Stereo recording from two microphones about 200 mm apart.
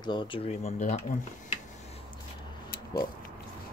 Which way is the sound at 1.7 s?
35° left (ahead or behind).